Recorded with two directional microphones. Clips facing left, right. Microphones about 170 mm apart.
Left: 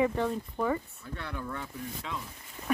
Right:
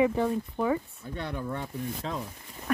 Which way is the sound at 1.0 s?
20° right (ahead or behind).